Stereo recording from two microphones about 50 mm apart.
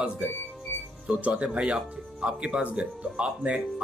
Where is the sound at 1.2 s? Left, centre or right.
Right.